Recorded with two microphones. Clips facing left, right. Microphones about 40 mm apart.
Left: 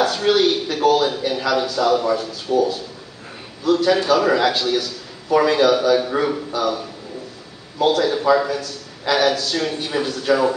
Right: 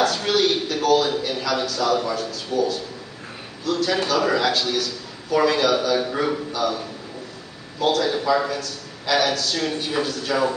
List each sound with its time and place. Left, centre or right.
0.0 s a sound: centre
2.5 s a man's voice: centre
7.8 s a man's voice: centre